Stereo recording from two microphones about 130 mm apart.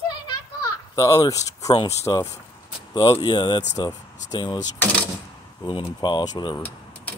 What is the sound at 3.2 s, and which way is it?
Speech, 35° left (ahead or behind).